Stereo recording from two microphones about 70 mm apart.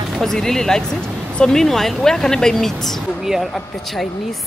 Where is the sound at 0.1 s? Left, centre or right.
Centre.